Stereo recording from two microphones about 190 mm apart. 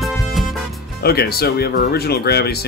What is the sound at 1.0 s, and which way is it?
Speech, 55° left (ahead or behind).